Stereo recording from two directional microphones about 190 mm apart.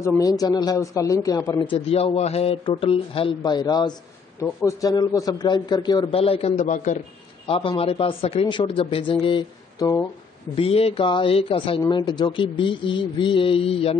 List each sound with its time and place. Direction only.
0.0 s a man's voice: 20° left (ahead or behind)
1.9 s speech: 30° left (ahead or behind)
10.5 s speech: 30° left (ahead or behind)